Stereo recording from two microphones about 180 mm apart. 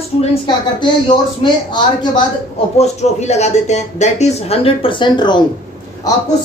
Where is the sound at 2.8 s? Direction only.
40° left (ahead or behind).